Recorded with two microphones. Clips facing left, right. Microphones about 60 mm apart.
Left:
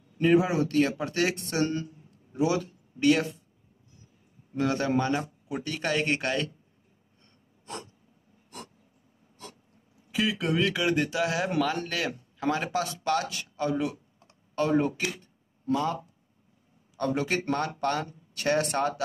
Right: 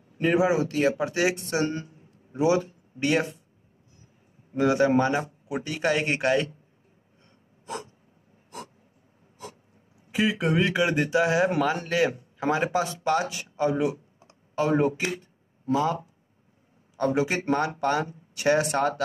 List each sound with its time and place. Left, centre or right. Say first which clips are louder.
0.2 s speech: right 1 dB; centre; by 3.3 s right
4.6 s speech: right 5 dB; centre
7.6 s a sound: right 4 dB; centre
10.1 s speech: right 3 dB; right
14.2 s computer keyboard: right 2 dB; centre
15.0 s speech: right 3 dB; right
15.6 s a man's voice: right 3 dB; centre